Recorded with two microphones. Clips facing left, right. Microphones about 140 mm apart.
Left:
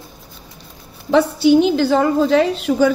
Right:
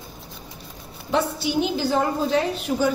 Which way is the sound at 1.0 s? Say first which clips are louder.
Left 10 dB; 80° left.